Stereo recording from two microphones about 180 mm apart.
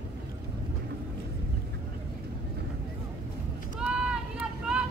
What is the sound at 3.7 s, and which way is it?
Vehicle, 5° right (ahead or behind).